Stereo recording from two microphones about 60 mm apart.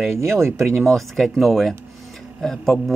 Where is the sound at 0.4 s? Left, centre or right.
Right.